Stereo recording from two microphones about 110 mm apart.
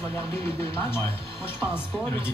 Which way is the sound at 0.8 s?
20° left (ahead or behind).